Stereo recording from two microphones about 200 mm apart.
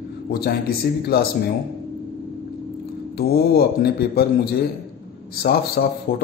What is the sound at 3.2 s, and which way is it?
Speech, 50° left (ahead or behind).